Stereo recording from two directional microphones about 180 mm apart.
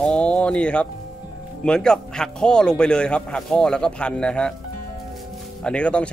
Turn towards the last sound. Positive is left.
turn(degrees=5)  # may be behind; listen again after turning